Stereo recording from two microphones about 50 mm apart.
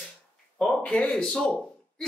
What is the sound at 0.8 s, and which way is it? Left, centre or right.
Speech, left.